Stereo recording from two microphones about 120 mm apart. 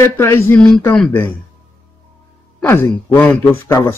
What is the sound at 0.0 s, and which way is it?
Speech, 20° left (ahead or behind).